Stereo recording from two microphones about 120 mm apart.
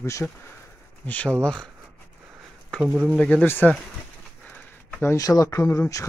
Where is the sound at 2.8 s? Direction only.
10° right (ahead or behind).